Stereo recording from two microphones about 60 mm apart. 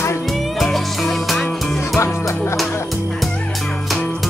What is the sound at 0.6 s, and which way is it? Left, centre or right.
Music, centre.